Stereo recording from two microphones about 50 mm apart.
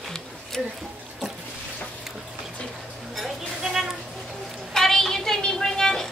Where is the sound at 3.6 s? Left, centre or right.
Centre.